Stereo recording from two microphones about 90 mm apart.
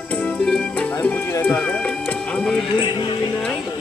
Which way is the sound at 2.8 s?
60° left (ahead or behind).